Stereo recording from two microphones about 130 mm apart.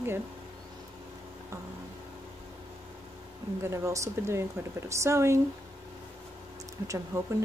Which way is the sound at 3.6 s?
20° right (ahead or behind).